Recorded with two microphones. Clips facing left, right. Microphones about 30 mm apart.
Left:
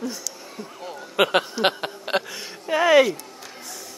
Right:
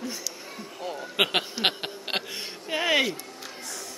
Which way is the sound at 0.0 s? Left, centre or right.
Centre.